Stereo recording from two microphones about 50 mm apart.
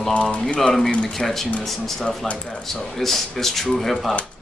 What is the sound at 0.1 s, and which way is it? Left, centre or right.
Speech, left.